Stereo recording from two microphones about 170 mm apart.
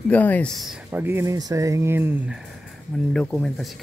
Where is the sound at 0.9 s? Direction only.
15° right (ahead or behind).